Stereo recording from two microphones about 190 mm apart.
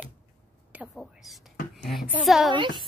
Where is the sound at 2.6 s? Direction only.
25° right (ahead or behind).